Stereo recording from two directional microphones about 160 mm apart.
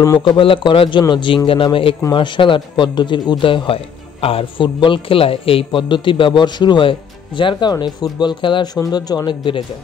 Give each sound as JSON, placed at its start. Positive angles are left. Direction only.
{"t": 0.0, "sound": "speech", "side_deg": 20}
{"t": 0.3, "sound": "a man's voice", "side_deg": 30}